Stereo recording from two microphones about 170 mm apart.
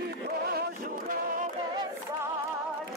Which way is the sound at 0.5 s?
60° right (ahead or behind).